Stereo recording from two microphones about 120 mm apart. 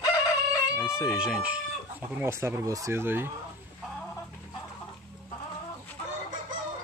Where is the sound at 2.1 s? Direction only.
20° right (ahead or behind).